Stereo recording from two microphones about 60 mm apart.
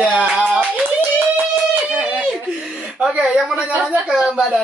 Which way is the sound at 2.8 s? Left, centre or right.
Centre.